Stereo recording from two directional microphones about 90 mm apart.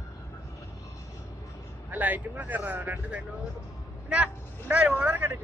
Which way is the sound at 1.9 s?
20° right (ahead or behind).